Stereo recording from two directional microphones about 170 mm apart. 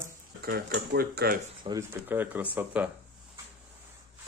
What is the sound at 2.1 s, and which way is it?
Speech, 10° right (ahead or behind).